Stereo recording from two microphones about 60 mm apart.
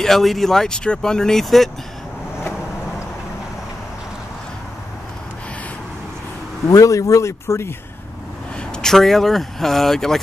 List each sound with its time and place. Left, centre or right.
0.0 s speech: centre
6.7 s speech: left
8.5 s speech: centre